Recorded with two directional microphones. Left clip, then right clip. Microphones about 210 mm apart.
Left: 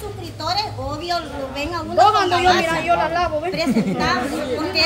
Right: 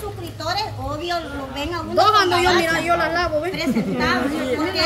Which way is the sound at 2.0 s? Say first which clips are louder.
Left 1 dB; 55° right (ahead or behind).